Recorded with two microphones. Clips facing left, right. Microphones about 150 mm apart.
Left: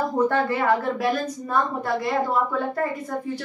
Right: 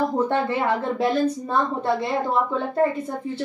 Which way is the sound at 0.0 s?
20° right (ahead or behind).